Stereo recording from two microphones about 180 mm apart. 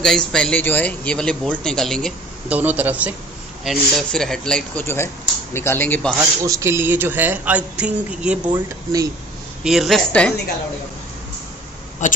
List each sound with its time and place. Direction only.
0.0 s a man's voice: 5° left (ahead or behind)
2.5 s speech: 10° right (ahead or behind)
3.6 s speech: centre (ahead or behind)
6.1 s speech: 15° right (ahead or behind)
8.6 s speech: 20° right (ahead or behind)
9.6 s a man's voice: centre (ahead or behind)
12.0 s speech: 45° left (ahead or behind)